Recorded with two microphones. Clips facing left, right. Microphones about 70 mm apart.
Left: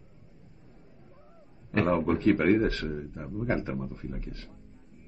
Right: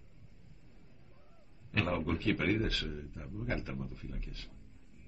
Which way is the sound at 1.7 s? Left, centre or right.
Left.